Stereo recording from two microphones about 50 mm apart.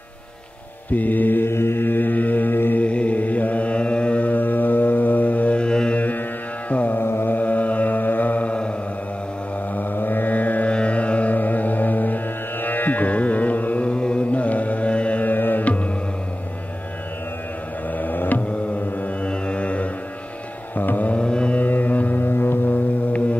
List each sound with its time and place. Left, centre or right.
0.9 s mantra: left
1.5 s mantra: left
2.8 s mantra: left
5.9 s music: left
7.0 s mantra: left
7.3 s mantra: left
9.8 s music: left
17.9 s music: left
18.4 s music: left
19.2 s mantra: left
20.7 s music: left
21.2 s music: left
21.5 s music: left